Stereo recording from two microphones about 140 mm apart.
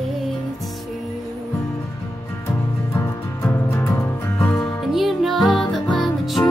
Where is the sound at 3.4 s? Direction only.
15° left (ahead or behind).